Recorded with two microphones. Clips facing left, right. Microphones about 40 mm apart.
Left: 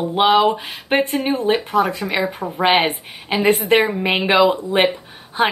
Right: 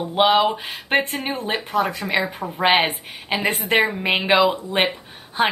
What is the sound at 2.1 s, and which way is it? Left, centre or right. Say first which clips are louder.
Speech: left 1 dB; centre.